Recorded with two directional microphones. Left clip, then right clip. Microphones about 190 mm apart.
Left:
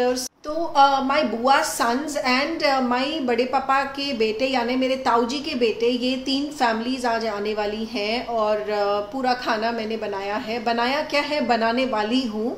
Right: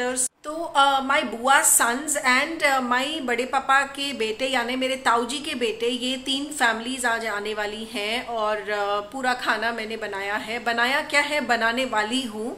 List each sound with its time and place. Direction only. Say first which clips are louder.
0.7 s a woman's voice: left 2 dB; centre (ahead or behind)